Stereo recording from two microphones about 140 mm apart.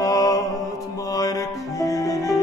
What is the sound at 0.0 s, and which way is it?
Music, 25° left (ahead or behind).